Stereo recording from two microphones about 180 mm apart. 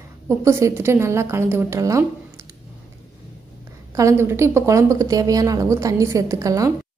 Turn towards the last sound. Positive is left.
turn(degrees=-20)  # may be behind; listen again after turning